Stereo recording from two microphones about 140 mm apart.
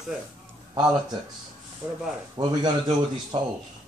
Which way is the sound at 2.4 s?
30° right (ahead or behind).